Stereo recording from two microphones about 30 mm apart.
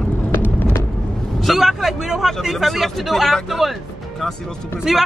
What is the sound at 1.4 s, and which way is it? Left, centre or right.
Speech, centre.